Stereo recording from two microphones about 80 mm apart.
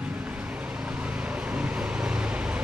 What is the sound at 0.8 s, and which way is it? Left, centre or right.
Vehicle, centre.